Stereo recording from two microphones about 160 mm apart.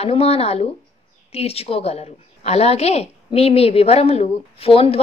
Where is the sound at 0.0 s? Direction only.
40° left (ahead or behind).